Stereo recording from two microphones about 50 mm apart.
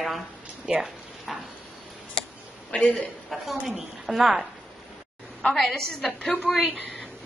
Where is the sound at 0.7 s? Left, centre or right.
Centre.